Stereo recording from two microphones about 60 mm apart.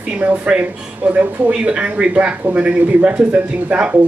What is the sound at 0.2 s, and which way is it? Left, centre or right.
Speech, right.